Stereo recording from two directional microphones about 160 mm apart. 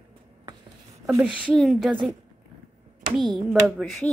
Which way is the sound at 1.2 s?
10° right (ahead or behind).